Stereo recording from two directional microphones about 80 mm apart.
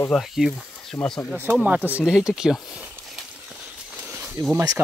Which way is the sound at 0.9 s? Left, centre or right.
Centre.